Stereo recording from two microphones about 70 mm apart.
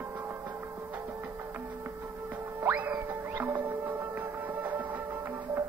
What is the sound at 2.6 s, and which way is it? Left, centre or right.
Music, right.